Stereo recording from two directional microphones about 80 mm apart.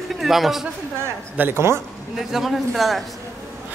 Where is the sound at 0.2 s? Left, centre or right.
Centre.